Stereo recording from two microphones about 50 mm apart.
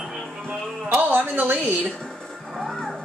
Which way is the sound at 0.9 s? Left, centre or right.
Right.